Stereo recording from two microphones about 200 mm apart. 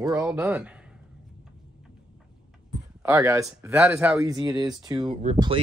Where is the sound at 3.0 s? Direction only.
15° right (ahead or behind).